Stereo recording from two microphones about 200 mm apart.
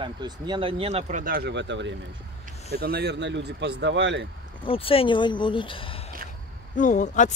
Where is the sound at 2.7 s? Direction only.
50° right (ahead or behind).